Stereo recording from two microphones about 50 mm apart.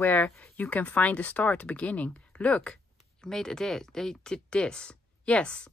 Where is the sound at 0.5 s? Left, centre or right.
Left.